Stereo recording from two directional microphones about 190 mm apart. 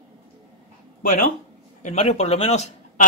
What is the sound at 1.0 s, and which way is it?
Speech, 45° left (ahead or behind).